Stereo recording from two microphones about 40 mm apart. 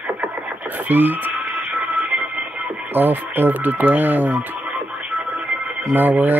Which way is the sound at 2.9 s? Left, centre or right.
Right.